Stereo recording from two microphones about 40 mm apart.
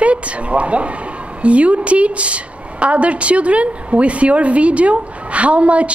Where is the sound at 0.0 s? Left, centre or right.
Right.